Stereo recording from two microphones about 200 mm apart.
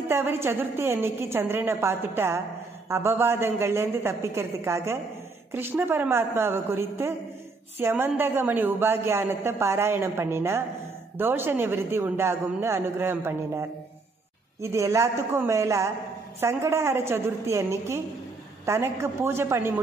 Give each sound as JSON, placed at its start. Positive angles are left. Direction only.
{"t": 0.1, "sound": "a man's voice", "side_deg": -10}